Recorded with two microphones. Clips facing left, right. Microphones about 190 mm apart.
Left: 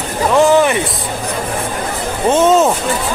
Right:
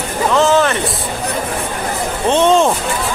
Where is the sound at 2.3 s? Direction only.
5° left (ahead or behind).